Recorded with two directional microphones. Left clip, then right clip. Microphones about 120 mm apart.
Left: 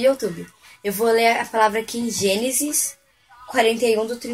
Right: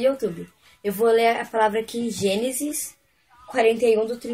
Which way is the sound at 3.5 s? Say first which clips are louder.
Left 1 dB; 20° right (ahead or behind).